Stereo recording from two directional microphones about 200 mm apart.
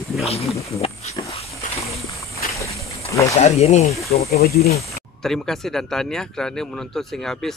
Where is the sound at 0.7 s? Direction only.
30° left (ahead or behind).